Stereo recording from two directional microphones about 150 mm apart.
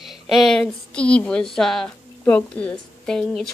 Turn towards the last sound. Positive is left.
turn(degrees=5)  # may be behind; listen again after turning